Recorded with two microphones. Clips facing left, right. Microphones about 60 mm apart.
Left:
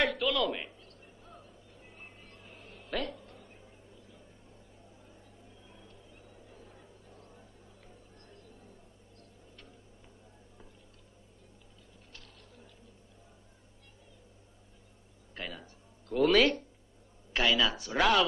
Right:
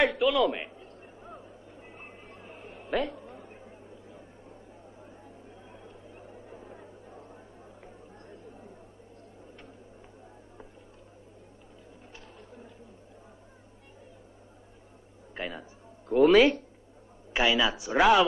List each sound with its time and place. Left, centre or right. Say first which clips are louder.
0.2 s speech: right 6 dB; centre
0.7 s vehicle: right 7 dB; right
5.7 s a sound: right 7 dB; right
15.3 s a man's voice: right 5 dB; right